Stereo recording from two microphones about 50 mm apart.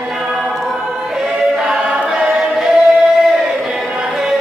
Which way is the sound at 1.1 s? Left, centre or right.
Centre.